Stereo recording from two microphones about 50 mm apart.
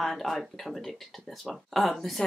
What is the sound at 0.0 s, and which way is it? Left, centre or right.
Speech, centre.